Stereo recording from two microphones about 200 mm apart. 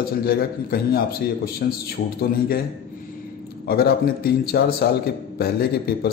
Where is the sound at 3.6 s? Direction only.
50° left (ahead or behind).